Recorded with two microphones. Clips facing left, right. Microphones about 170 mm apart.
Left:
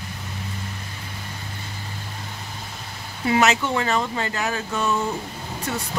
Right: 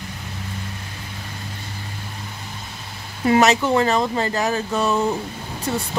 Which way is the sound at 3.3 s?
35° right (ahead or behind).